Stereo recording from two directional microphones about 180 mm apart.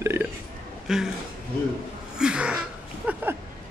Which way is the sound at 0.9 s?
Centre (ahead or behind).